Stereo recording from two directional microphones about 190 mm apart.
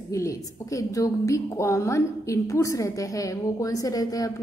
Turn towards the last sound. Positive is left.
turn(degrees=20)  # may be behind; listen again after turning